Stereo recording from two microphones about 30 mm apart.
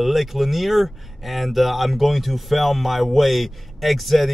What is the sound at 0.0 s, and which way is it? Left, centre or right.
Speech, centre.